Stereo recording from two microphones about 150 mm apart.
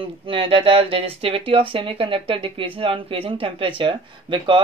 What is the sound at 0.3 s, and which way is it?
Speech, 35° right (ahead or behind).